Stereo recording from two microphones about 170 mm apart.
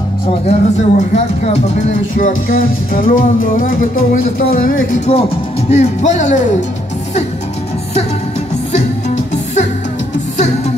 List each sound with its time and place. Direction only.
0.5 s speech: 40° left (ahead or behind)
5.7 s speech: 45° left (ahead or behind)